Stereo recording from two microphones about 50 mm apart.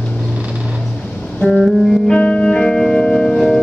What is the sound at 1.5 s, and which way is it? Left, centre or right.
Music, centre.